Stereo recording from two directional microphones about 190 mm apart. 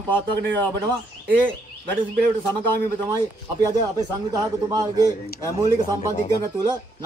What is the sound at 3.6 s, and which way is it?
A man's voice, 20° right (ahead or behind).